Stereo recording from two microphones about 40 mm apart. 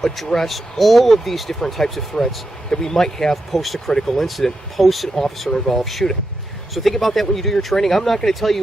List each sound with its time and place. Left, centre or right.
0.2 s speech: centre
3.5 s speech: centre
5.1 s speech: centre